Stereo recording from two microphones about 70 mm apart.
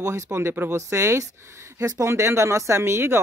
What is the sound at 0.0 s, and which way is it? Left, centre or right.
Speech, right.